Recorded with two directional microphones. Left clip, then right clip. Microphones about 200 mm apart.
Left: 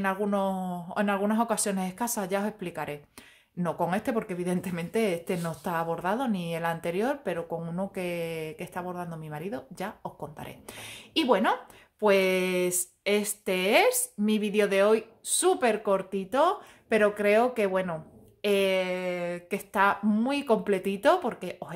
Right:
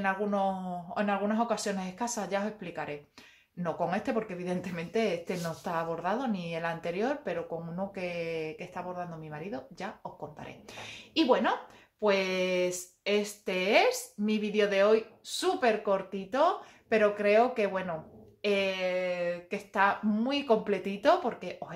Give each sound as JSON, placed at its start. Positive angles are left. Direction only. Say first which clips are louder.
{"t": 0.0, "sound": "speech", "louder": "left 1 dB", "side_deg": 40}